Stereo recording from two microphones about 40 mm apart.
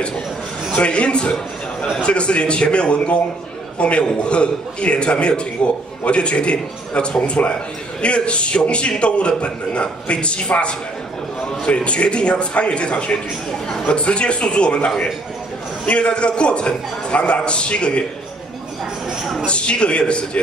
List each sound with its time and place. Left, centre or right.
0.8 s a man's voice: left
19.4 s a man's voice: left